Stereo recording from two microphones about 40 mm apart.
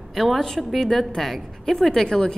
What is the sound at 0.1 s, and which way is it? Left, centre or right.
Speech, centre.